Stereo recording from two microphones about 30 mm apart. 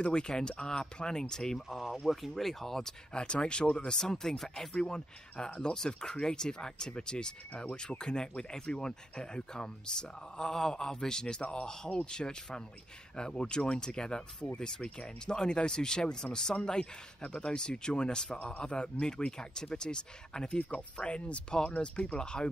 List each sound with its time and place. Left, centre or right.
0.0 s speech: left
2.3 s speech: centre
3.1 s speech: left
3.9 s speech: centre
4.7 s speech: left
17.2 s speech: left